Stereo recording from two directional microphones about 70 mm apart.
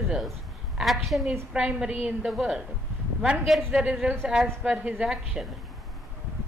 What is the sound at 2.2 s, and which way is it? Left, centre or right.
Speech, centre.